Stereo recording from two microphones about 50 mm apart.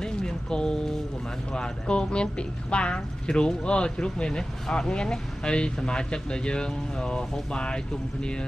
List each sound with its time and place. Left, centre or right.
0.0 s music: centre
1.5 s a woman's voice: centre